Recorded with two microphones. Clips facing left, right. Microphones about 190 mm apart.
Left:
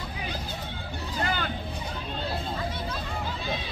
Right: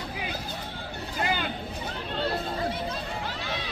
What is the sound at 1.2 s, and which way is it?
Vehicle, 15° right (ahead or behind).